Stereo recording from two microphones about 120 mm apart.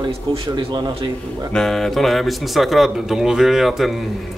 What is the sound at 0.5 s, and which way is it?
Speech, 40° right (ahead or behind).